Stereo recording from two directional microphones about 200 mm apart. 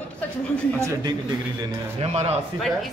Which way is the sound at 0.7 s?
15° right (ahead or behind).